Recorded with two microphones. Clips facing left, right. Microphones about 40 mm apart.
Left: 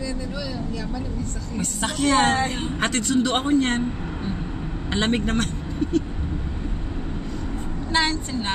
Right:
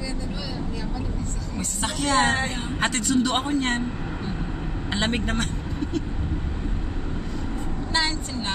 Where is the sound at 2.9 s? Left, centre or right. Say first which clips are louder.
Left 1 dB; left.